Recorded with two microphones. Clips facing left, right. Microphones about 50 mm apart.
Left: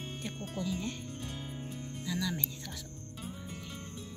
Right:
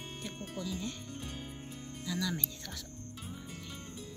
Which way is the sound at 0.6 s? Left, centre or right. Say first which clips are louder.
Left 3 dB; centre.